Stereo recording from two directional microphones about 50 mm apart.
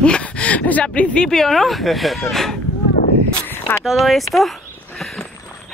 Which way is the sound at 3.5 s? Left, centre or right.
Left.